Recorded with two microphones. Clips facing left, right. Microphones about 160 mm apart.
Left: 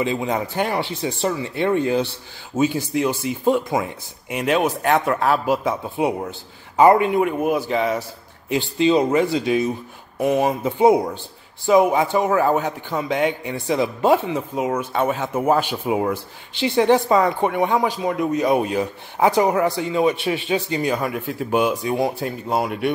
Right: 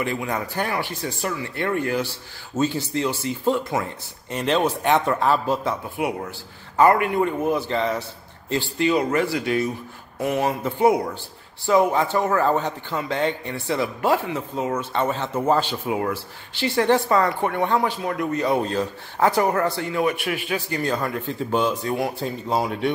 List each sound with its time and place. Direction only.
0.0 s a man's voice: 20° left (ahead or behind)
6.0 s a man's voice: 25° left (ahead or behind)
22.2 s speech: 5° left (ahead or behind)